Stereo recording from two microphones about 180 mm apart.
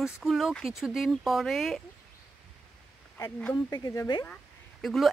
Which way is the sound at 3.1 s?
10° left (ahead or behind).